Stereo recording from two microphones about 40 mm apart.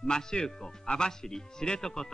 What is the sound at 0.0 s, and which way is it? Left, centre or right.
Speech, centre.